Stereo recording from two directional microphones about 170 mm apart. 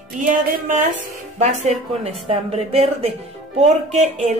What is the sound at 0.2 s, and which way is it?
Speech, 50° right (ahead or behind).